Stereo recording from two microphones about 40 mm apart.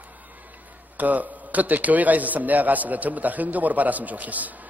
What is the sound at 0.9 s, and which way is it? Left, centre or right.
A man's voice, right.